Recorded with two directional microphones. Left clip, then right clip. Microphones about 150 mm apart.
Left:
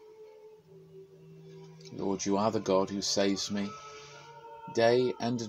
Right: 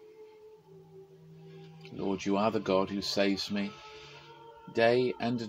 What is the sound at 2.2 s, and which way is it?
Speech, 15° left (ahead or behind).